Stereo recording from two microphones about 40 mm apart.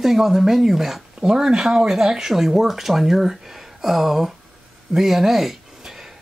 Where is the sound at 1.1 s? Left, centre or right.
Centre.